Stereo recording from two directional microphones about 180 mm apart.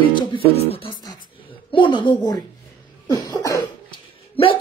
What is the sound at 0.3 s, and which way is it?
Speech, 30° left (ahead or behind).